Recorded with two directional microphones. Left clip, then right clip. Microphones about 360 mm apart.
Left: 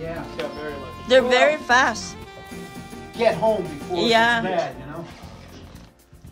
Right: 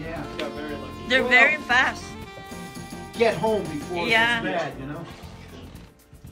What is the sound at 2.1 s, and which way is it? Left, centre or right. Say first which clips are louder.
Music: even; centre.